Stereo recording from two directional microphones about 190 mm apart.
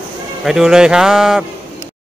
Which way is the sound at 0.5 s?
Centre (ahead or behind).